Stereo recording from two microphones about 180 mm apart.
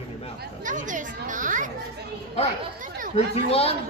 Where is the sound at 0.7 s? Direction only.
45° right (ahead or behind).